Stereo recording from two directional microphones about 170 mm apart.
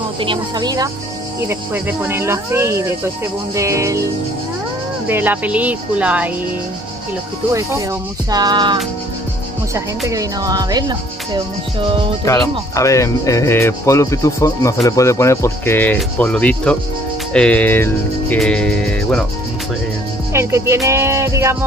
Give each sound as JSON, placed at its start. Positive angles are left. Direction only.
{"t": 0.2, "sound": "speech", "side_deg": -25}
{"t": 1.5, "sound": "speech", "side_deg": -15}
{"t": 5.0, "sound": "speech", "side_deg": -10}
{"t": 8.3, "sound": "speech", "side_deg": -25}
{"t": 9.8, "sound": "speech", "side_deg": -20}
{"t": 12.3, "sound": "speech", "side_deg": 20}
{"t": 18.4, "sound": "music", "side_deg": 5}
{"t": 20.3, "sound": "speech", "side_deg": -15}